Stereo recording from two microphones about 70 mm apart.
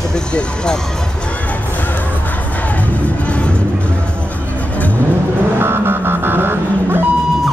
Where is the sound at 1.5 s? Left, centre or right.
Left.